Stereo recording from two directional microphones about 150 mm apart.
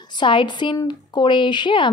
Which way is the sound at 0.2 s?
30° left (ahead or behind).